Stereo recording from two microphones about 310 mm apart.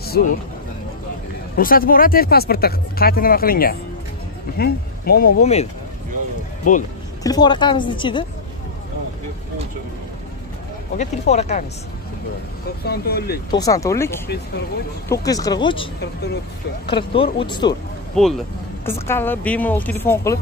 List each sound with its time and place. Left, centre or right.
0.2 s speech: left
1.6 s speech: left
7.2 s speech: centre
11.0 s speech: left
12.8 s speech: left
13.5 s speech: centre
18.1 s speech: centre